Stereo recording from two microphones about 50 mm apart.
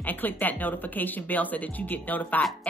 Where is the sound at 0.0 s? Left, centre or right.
Left.